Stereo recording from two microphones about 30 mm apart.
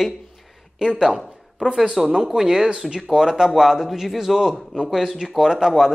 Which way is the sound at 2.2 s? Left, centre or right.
Centre.